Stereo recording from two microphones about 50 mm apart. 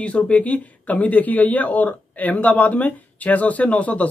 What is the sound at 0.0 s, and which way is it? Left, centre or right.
Speech, left.